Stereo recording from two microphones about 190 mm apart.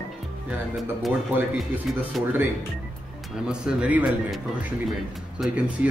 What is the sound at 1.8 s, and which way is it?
Speech, centre (ahead or behind).